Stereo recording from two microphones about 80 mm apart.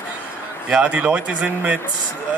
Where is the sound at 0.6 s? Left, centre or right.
Centre.